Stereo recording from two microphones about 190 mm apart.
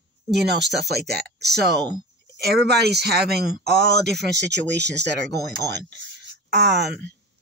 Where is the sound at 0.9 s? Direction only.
60° right (ahead or behind).